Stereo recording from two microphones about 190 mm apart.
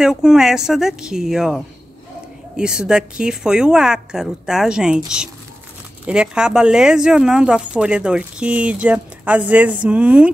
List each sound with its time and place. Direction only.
0.0 s a woman's voice: 5° right (ahead or behind)